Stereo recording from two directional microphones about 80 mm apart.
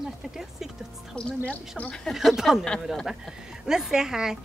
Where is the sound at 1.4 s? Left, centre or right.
Centre.